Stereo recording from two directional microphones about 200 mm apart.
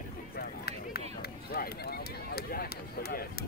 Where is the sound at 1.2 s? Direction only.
50° left (ahead or behind).